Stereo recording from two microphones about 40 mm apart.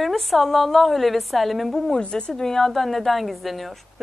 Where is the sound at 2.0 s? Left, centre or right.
Left.